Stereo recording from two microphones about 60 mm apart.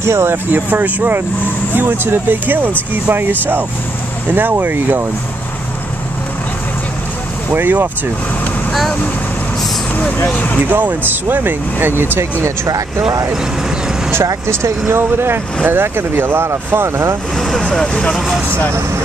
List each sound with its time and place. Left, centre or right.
0.0 s speech: right
0.5 s speech: right
7.5 s speech: right
9.9 s speech: left
10.7 s speech: right
14.5 s speech: right
17.4 s speech: centre